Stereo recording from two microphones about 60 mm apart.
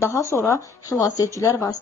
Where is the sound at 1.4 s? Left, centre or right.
Left.